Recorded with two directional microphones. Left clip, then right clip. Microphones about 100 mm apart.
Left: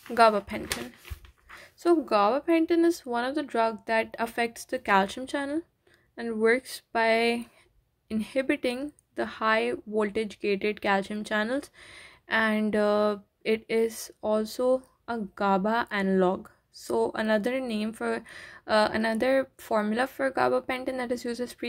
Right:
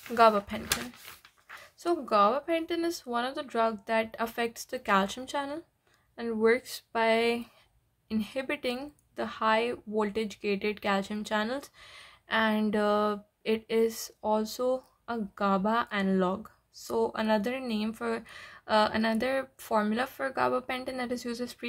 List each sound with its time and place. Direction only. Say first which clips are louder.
0.1 s speech: left 1 dB; 40° left (ahead or behind)
1.6 s speech: left 7 dB; 50° left (ahead or behind)